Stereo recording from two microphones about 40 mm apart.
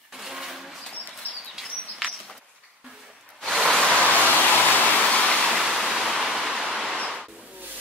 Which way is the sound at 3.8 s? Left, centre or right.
Left.